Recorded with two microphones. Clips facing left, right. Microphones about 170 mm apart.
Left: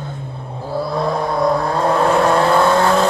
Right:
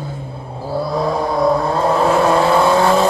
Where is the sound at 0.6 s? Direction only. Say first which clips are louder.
Right 1 dB; 5° right (ahead or behind).